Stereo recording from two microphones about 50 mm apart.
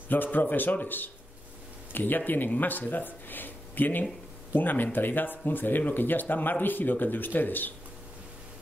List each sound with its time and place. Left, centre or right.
0.1 s speech: left